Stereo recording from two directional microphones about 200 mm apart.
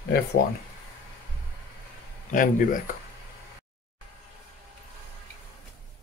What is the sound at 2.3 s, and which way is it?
Speech, 40° left (ahead or behind).